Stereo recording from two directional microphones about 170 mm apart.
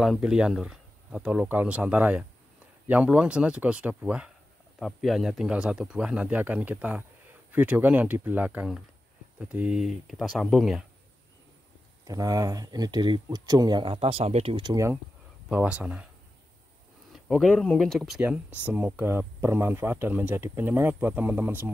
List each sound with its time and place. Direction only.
0.0 s speech: centre (ahead or behind)
12.0 s speech: 20° right (ahead or behind)
15.4 s speech: 10° right (ahead or behind)
17.1 s speech: centre (ahead or behind)